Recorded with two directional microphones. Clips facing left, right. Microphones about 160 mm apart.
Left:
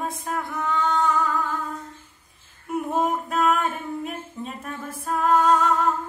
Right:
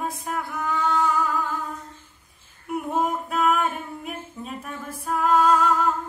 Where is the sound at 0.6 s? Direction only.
5° right (ahead or behind).